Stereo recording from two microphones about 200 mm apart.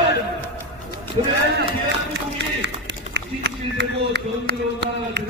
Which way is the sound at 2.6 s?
60° right (ahead or behind).